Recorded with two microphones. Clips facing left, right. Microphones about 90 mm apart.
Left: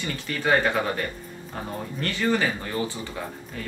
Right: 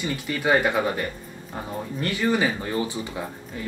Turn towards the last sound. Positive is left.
turn(degrees=-15)  # may be behind; listen again after turning